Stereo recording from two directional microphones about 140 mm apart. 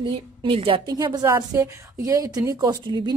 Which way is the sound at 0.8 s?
25° right (ahead or behind).